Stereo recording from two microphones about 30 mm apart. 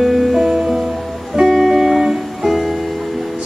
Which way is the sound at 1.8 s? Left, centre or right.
Centre.